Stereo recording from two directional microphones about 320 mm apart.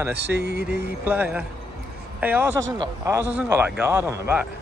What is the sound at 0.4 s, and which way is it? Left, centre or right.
Mantra, right.